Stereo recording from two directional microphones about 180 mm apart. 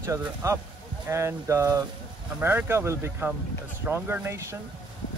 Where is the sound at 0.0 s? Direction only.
15° right (ahead or behind).